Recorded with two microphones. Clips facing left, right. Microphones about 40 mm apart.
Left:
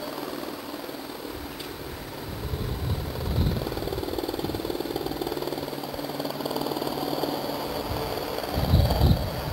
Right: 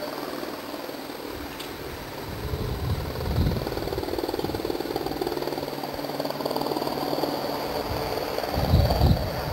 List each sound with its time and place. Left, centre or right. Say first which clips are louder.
4.2 s vehicle: right 2 dB; centre